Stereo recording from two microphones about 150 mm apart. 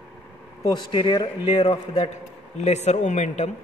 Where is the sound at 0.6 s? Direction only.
30° left (ahead or behind); by 3.5 s 50° left (ahead or behind).